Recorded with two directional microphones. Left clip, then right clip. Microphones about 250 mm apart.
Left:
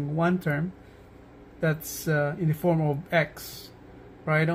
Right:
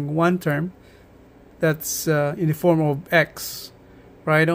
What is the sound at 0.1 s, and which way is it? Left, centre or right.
Speech, right.